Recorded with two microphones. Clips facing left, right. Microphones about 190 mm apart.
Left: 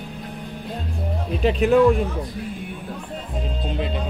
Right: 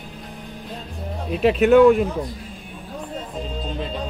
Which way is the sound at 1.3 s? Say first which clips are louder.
Right 3 dB; 5° right (ahead or behind).